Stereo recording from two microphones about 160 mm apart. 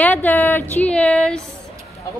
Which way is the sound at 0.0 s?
10° left (ahead or behind).